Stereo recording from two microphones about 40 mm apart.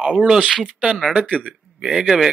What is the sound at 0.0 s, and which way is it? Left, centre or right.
A man's voice, right.